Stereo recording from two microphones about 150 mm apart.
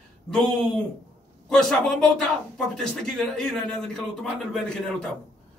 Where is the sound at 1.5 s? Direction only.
5° left (ahead or behind).